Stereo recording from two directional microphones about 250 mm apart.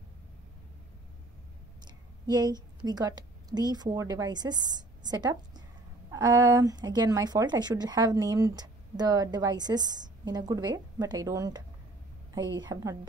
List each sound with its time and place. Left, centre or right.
1.9 s a woman's voice: centre